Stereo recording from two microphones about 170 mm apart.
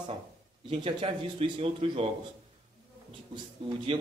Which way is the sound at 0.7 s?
30° right (ahead or behind).